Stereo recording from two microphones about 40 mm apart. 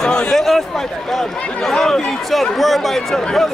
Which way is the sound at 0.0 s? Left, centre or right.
Centre.